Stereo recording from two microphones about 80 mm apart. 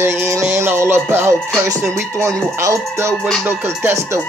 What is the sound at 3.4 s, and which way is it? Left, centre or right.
Music, right.